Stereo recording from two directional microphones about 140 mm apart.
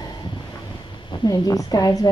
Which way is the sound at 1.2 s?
25° left (ahead or behind).